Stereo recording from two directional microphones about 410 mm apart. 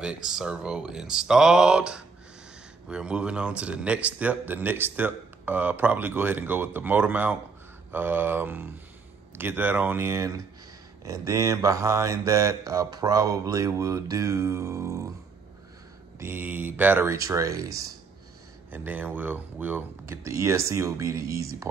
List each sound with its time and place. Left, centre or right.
0.0 s speech: centre
11.1 s mantra: centre
16.2 s speech: centre
18.7 s mantra: centre